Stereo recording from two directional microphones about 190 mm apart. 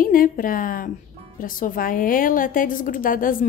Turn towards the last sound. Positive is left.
turn(degrees=45)  # may be behind; listen again after turning